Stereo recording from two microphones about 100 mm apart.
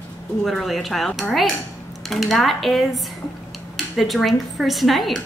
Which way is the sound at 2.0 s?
Centre (ahead or behind).